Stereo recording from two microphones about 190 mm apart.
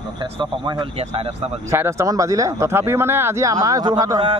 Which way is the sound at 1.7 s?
15° right (ahead or behind).